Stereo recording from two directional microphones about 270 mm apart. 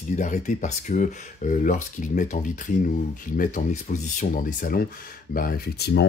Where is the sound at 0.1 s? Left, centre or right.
Left.